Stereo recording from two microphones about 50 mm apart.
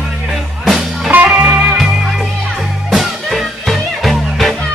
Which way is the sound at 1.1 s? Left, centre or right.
Right.